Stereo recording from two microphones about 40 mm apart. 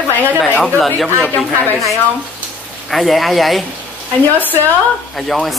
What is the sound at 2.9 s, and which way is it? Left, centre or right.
Speech, centre.